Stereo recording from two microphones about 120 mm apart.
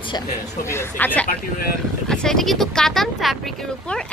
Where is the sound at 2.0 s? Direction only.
5° left (ahead or behind).